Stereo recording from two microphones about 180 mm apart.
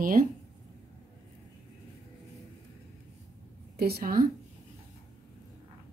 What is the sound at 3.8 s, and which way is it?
Speech, 60° right (ahead or behind).